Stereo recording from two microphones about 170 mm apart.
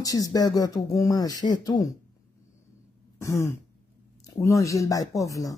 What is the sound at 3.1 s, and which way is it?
Throat clearing, 15° left (ahead or behind).